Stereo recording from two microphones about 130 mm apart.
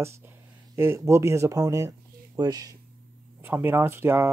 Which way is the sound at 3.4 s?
15° right (ahead or behind).